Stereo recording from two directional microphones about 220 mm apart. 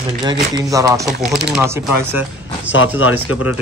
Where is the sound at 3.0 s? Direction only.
75° left (ahead or behind).